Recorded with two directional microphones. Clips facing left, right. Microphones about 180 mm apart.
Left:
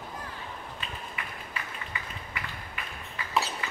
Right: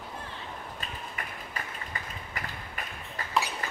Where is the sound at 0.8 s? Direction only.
45° right (ahead or behind).